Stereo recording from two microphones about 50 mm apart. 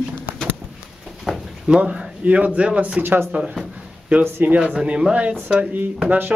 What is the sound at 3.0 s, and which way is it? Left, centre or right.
Speech, right.